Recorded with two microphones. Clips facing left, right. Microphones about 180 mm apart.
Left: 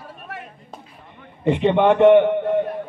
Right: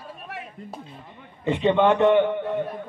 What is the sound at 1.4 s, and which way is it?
A man's voice, 15° left (ahead or behind).